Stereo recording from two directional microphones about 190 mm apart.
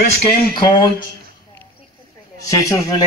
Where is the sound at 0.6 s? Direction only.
25° left (ahead or behind).